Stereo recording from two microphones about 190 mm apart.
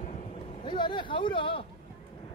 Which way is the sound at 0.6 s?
25° left (ahead or behind).